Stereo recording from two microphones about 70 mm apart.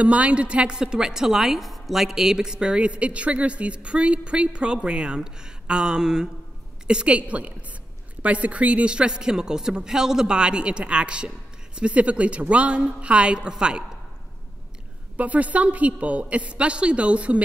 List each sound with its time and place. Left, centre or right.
0.0 s a woman's voice: centre
15.1 s a woman's voice: right